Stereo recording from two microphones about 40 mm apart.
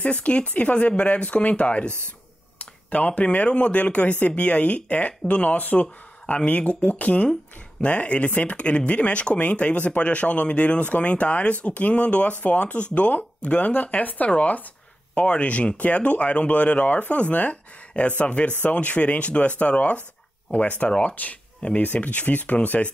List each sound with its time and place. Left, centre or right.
0.0 s speech: left
2.6 s a sound: left
3.3 s speech: left
21.5 s speech: left
21.8 s speech: left